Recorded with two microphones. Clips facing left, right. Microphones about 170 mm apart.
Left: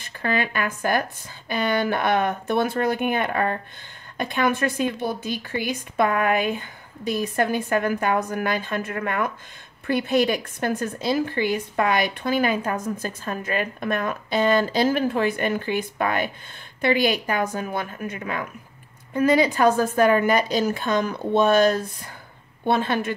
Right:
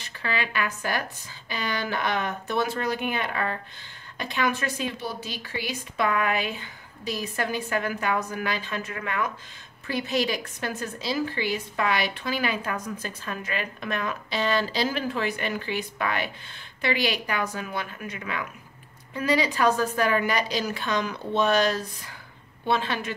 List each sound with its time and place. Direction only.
0.0 s a woman's voice: 50° left (ahead or behind)